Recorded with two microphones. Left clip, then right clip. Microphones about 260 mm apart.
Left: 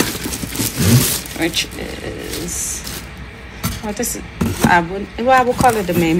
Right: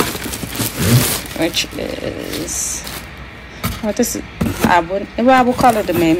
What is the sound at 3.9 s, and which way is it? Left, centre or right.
Speech, centre.